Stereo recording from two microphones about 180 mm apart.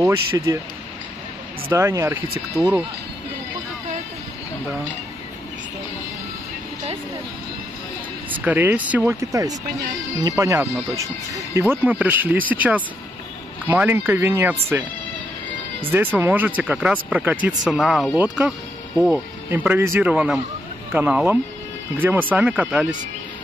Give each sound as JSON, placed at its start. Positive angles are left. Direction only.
{"t": 0.5, "sound": "speech", "side_deg": -20}
{"t": 1.7, "sound": "speech", "side_deg": -15}
{"t": 8.3, "sound": "speech", "side_deg": -10}
{"t": 15.9, "sound": "speech", "side_deg": -10}